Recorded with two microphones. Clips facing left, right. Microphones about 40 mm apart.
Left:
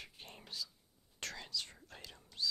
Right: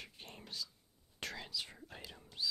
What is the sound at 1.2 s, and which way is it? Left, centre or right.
Whispering, centre.